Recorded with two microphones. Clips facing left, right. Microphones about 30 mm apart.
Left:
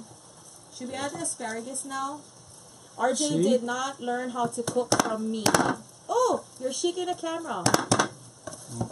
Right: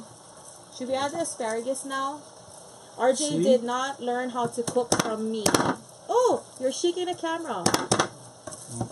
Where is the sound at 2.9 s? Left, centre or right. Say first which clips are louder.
Right 2 dB; centre.